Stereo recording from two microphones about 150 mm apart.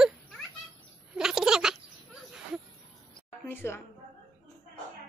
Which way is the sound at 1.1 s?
5° right (ahead or behind).